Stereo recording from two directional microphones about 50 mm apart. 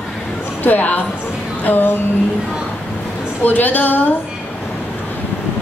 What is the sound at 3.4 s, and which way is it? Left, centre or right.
Speech, left.